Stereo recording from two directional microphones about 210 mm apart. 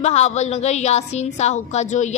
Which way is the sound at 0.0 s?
30° left (ahead or behind).